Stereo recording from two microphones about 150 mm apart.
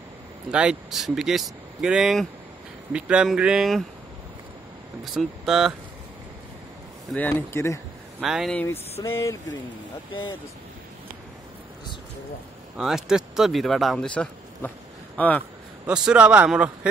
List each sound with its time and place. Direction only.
0.5 s speech: 5° right (ahead or behind)
5.0 s speech: centre (ahead or behind)
7.1 s speech: 10° left (ahead or behind)
8.2 s speech: centre (ahead or behind)
9.0 s speech: 20° left (ahead or behind)
12.7 s speech: 5° right (ahead or behind)
15.9 s speech: 5° right (ahead or behind)